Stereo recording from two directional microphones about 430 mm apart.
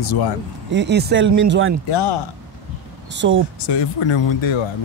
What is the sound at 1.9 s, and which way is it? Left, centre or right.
Speech, left.